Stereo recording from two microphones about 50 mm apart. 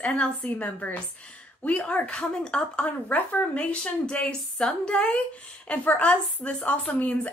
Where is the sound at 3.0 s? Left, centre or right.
Left.